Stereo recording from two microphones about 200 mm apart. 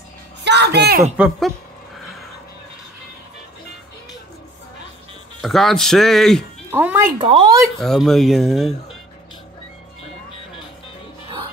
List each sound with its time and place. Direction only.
0.4 s music: 60° right (ahead or behind)
1.1 s speech: 5° right (ahead or behind)
5.4 s speech: centre (ahead or behind)
6.7 s speech: 10° right (ahead or behind)
7.2 s speech: 25° right (ahead or behind)
7.8 s speech: centre (ahead or behind)